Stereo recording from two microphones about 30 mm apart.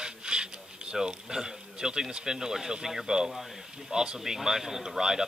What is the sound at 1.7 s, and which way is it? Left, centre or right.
Speech, right.